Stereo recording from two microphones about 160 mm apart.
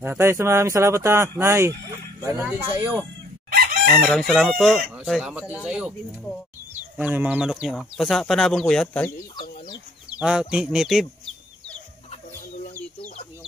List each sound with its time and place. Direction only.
0.0 s speech: 15° right (ahead or behind)
3.9 s speech: 5° left (ahead or behind)
7.0 s speech: 10° right (ahead or behind); by 9.1 s 10° left (ahead or behind)
10.0 s bird: 5° right (ahead or behind)
10.5 s speech: 5° right (ahead or behind)